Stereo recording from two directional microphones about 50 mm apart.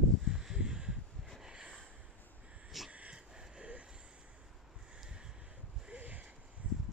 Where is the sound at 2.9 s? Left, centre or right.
Right.